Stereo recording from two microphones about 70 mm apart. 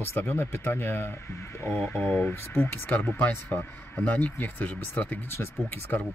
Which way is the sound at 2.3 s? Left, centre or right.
Left.